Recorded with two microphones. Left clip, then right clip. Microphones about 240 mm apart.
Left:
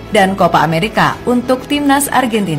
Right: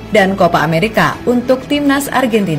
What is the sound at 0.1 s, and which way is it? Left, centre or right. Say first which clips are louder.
A woman's voice: even; centre.